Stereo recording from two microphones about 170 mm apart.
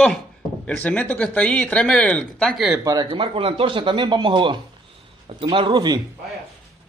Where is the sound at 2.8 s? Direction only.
20° right (ahead or behind).